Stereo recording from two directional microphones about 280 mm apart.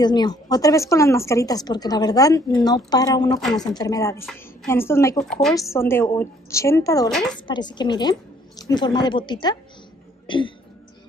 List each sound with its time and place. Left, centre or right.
0.0 s speech: centre
7.1 s speech: centre
7.4 s speech: centre